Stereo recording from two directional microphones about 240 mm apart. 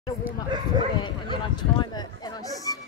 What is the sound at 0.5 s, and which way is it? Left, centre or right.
Speech, centre.